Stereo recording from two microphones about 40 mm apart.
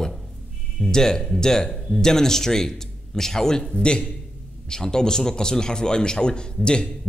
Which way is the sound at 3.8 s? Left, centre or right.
Left.